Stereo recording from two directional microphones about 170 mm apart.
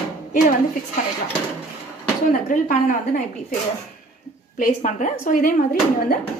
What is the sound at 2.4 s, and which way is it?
A woman's voice, 50° left (ahead or behind).